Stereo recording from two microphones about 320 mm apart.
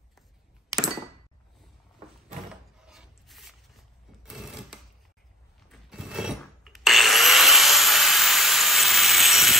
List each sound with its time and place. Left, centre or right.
2.5 s filing: centre
4.2 s sewing machine: centre
5.7 s rub: centre